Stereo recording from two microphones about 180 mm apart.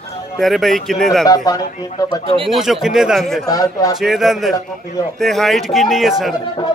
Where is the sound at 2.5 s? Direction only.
Centre (ahead or behind).